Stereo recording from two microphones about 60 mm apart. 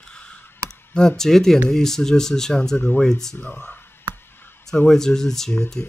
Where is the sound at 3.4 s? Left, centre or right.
Left.